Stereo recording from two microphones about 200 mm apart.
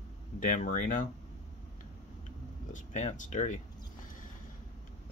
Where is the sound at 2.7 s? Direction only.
35° left (ahead or behind).